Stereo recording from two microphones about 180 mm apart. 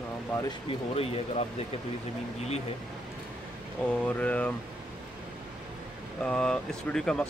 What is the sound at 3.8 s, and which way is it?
Speech, 10° left (ahead or behind).